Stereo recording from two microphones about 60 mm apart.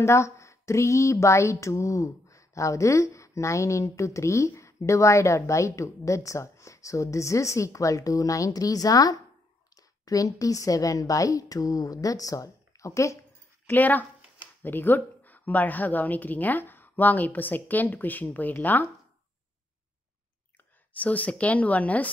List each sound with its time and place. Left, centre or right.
0.0 s a woman's voice: left
13.7 s a woman's voice: left
21.0 s a woman's voice: left